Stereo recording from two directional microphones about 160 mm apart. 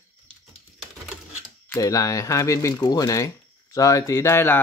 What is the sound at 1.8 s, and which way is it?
Speech, 20° left (ahead or behind).